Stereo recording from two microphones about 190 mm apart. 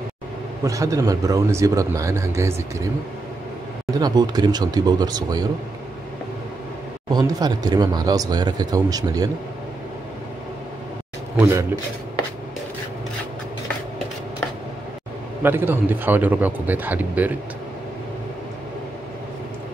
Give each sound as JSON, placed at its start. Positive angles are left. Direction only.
{"t": 0.7, "sound": "speech", "side_deg": -15}
{"t": 3.9, "sound": "speech", "side_deg": -20}
{"t": 7.1, "sound": "speech", "side_deg": -20}
{"t": 11.3, "sound": "speech", "side_deg": -15}
{"t": 15.4, "sound": "speech", "side_deg": -10}